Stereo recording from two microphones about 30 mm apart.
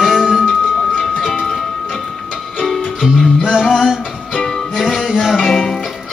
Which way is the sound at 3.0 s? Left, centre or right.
Right.